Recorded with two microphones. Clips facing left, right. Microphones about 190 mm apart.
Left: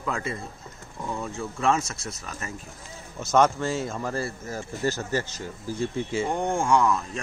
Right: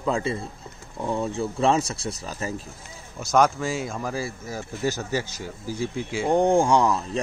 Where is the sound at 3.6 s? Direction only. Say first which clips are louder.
Even; 10° right (ahead or behind).